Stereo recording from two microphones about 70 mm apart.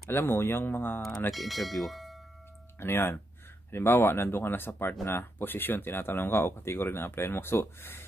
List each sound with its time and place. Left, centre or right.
0.1 s speech: left
1.3 s speech: centre
2.8 s speech: left